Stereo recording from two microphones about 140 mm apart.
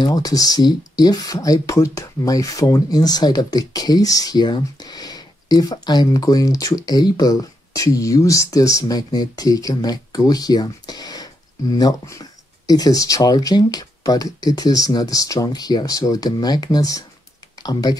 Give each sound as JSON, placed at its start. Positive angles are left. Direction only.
{"t": 0.0, "sound": "speech", "side_deg": 25}